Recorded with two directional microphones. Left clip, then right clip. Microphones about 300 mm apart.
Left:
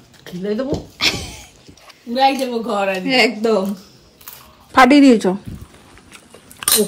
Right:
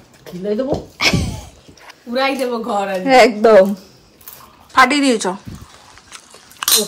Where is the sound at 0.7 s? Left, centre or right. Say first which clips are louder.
Right 2 dB; centre.